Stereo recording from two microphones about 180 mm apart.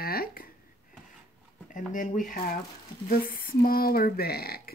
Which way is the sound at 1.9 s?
50° left (ahead or behind).